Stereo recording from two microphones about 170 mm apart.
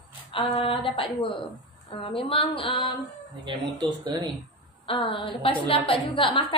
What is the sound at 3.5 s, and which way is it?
Speech, 25° right (ahead or behind).